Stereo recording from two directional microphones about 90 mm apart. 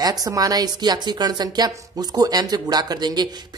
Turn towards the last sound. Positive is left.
turn(degrees=-50)  # may be behind; listen again after turning